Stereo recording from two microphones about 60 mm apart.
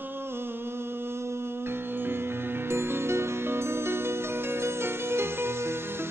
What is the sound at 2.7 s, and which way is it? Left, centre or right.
Music, right.